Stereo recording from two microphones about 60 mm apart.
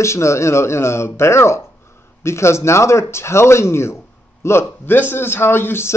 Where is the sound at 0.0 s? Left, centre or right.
Left.